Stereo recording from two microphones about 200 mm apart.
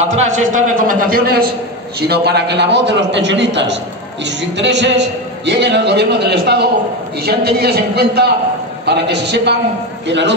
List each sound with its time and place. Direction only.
0.0 s a man's voice: 35° right (ahead or behind); by 10.3 s 65° right (ahead or behind)